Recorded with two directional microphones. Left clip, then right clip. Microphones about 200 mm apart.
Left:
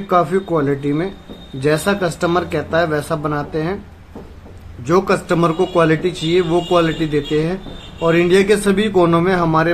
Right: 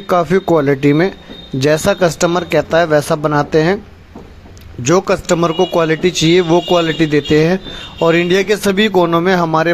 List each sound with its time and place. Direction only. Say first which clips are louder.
0.1 s speech: right 3 dB; 40° right (ahead or behind)
4.8 s speech: right 3 dB; 40° right (ahead or behind)